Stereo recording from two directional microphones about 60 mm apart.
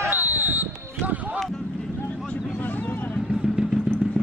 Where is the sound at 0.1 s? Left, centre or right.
Right.